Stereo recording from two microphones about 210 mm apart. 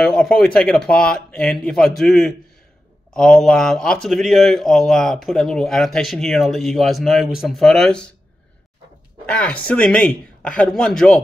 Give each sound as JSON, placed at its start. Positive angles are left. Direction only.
{"t": 0.0, "sound": "speech", "side_deg": 5}
{"t": 9.2, "sound": "speech", "side_deg": 5}